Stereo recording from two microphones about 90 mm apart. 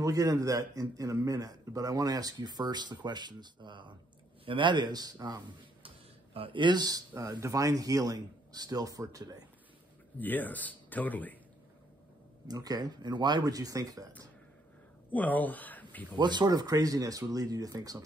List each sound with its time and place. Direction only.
0.0 s a man's voice: 40° right (ahead or behind)
6.3 s a man's voice: 75° right (ahead or behind); by 9.4 s 45° right (ahead or behind)
10.1 s speech: 20° left (ahead or behind)
12.4 s a man's voice: 45° right (ahead or behind)
15.0 s speech: 20° left (ahead or behind)
16.2 s a man's voice: 55° right (ahead or behind)